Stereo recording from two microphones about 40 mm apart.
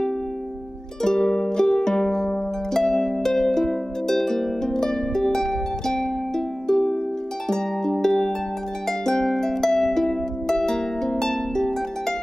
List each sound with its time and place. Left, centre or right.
1.0 s music: centre
8.8 s harp: centre